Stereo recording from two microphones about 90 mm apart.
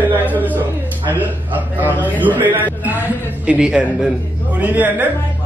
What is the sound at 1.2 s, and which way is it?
A man's voice, 20° right (ahead or behind).